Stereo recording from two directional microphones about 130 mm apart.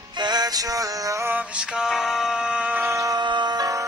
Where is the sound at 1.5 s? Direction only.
5° right (ahead or behind).